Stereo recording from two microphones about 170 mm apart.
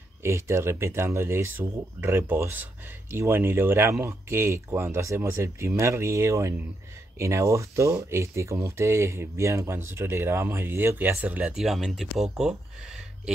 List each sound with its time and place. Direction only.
0.2 s speech: 15° right (ahead or behind)